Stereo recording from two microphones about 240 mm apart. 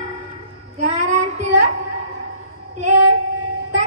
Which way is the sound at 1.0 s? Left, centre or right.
Right.